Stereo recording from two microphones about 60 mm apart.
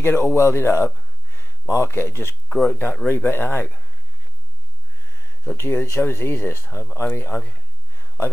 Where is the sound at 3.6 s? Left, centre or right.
Left.